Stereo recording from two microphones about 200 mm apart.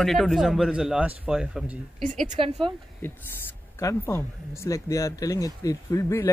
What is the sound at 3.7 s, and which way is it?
Speech, 15° left (ahead or behind).